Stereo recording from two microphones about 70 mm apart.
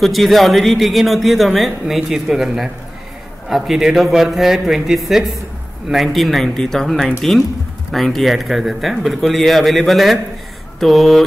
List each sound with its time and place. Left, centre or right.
0.0 s a man's voice: centre